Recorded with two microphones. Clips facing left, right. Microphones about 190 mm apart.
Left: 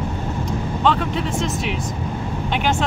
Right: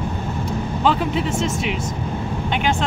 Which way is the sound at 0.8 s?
5° right (ahead or behind).